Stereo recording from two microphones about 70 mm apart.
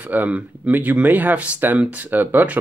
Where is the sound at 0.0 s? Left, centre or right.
Right.